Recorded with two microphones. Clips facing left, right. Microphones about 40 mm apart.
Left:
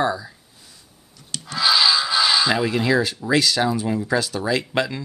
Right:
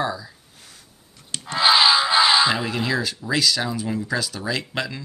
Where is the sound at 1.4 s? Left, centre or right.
Right.